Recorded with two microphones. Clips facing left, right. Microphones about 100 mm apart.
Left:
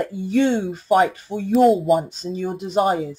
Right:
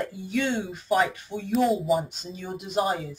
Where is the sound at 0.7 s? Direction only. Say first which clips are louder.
Left 5 dB; 45° left (ahead or behind).